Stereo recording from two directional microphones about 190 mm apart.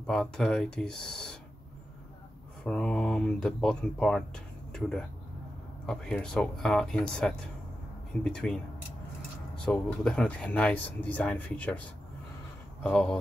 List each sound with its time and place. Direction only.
0.0 s speech: 5° left (ahead or behind)
2.6 s speech: 5° left (ahead or behind)
9.7 s speech: 5° left (ahead or behind)
12.8 s speech: 5° left (ahead or behind)